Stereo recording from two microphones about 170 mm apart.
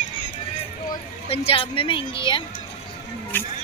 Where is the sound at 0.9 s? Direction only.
35° left (ahead or behind).